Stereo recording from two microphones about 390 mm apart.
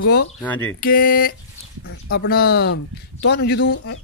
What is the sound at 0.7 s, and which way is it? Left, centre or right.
Speech, left.